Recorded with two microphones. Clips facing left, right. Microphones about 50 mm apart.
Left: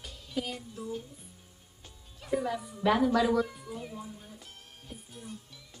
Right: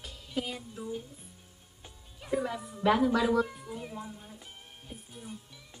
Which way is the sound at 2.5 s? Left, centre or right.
Centre.